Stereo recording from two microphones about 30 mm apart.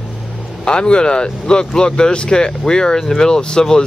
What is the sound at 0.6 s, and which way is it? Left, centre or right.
Speech, left.